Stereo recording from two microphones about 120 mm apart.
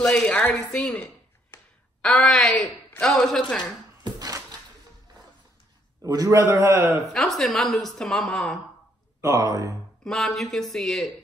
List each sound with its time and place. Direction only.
0.0 s a woman's voice: 5° left (ahead or behind)
0.7 s a sound: 10° left (ahead or behind)
2.9 s a woman's voice: 5° left (ahead or behind)
4.0 s a sound: 35° right (ahead or behind)
6.0 s a man's voice: 30° right (ahead or behind)
7.1 s a woman's voice: centre (ahead or behind)
9.2 s a man's voice: 30° right (ahead or behind)
10.0 s a woman's voice: centre (ahead or behind)